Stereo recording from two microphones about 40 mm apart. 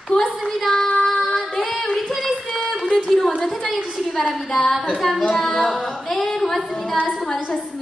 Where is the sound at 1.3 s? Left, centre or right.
Centre.